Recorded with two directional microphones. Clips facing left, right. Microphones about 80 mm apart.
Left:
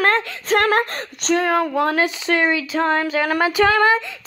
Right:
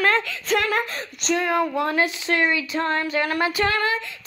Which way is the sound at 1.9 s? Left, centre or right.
Left.